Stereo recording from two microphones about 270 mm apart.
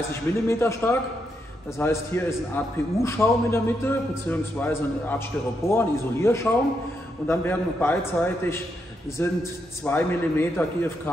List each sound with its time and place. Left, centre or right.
0.5 s a man's voice: centre